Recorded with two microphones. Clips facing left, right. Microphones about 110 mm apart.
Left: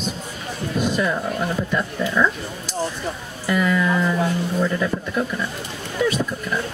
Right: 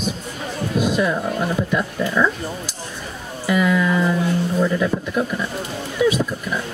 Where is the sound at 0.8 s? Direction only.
5° right (ahead or behind).